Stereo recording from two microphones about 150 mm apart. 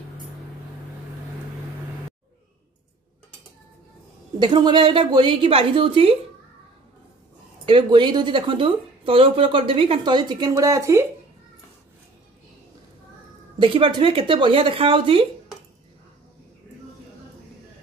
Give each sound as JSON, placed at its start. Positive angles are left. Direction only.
{"t": 4.4, "sound": "a woman's voice", "side_deg": -30}
{"t": 7.6, "sound": "a woman's voice", "side_deg": -30}
{"t": 13.6, "sound": "a woman's voice", "side_deg": -35}